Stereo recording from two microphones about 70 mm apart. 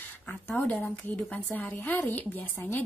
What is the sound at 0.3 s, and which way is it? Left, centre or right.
A woman's voice, left.